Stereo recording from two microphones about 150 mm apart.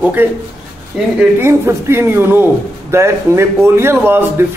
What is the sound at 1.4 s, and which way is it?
A man's voice, 15° right (ahead or behind).